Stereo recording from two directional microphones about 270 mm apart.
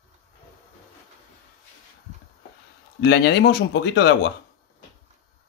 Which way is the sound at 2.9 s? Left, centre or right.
Left.